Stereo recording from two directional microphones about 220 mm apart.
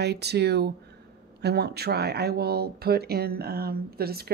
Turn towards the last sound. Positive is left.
turn(degrees=-45)  # may be behind; listen again after turning